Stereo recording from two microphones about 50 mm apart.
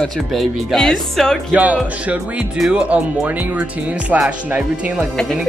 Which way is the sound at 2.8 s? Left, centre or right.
Right.